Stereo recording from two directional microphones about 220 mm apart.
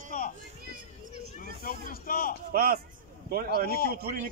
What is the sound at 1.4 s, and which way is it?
Speech, 40° left (ahead or behind).